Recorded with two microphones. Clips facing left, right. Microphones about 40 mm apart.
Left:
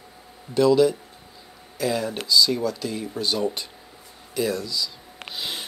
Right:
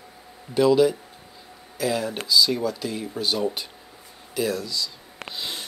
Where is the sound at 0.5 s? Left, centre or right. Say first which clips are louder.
Even; centre.